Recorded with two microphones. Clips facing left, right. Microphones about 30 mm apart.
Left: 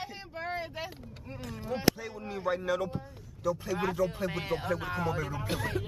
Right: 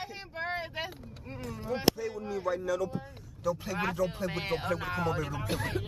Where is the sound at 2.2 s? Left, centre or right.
Left.